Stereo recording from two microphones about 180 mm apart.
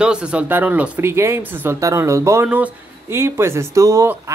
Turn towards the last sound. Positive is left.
turn(degrees=-15)  # may be behind; listen again after turning